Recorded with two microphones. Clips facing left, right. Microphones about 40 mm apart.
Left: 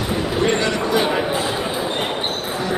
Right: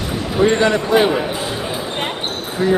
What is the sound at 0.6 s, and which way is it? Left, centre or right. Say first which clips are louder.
Speech: right 5 dB; right.